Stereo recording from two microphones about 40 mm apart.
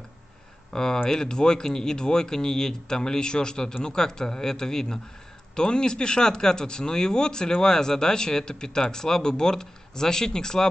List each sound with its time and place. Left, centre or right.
0.7 s speech: centre